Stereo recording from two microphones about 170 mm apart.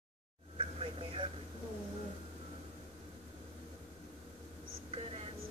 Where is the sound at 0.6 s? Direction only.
30° right (ahead or behind).